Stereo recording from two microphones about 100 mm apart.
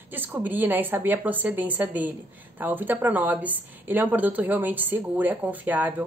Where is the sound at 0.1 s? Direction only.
20° right (ahead or behind).